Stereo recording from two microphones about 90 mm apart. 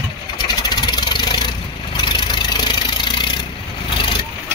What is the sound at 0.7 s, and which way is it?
Vehicle, 55° left (ahead or behind).